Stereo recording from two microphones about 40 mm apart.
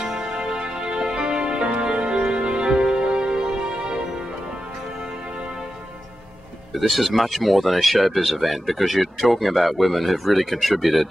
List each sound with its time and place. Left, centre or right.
0.0 s music: centre
6.7 s speech: centre